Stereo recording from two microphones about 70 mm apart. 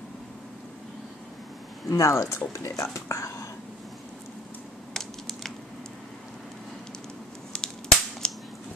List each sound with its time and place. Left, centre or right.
1.9 s speech: left
4.9 s typing: centre
7.5 s whip: centre
8.2 s cap gun: centre